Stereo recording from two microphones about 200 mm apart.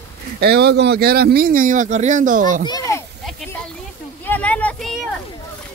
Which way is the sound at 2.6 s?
15° left (ahead or behind).